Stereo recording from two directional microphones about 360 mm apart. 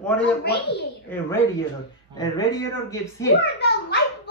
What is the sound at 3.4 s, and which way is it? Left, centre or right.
Speech, left.